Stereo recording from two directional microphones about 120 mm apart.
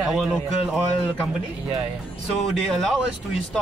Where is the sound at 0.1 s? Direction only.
5° right (ahead or behind).